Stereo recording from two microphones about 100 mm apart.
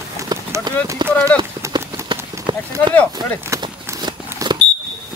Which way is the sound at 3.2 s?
45° right (ahead or behind).